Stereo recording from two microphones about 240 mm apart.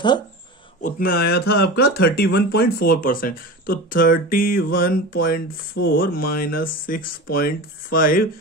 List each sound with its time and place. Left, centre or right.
0.8 s speech: left